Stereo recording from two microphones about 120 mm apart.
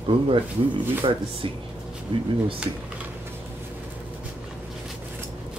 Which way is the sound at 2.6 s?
10° right (ahead or behind).